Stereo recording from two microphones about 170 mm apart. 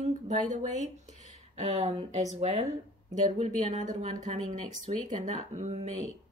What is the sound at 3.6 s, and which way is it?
A woman's voice, 45° right (ahead or behind).